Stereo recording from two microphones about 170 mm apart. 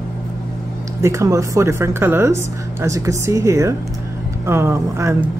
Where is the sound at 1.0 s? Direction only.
20° right (ahead or behind).